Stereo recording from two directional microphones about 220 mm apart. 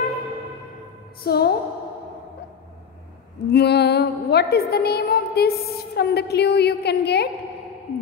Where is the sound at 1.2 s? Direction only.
45° left (ahead or behind).